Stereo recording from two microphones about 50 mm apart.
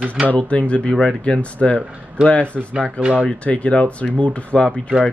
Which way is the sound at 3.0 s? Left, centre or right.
Right.